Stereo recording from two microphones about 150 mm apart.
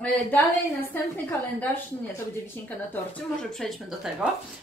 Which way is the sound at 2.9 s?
5° left (ahead or behind).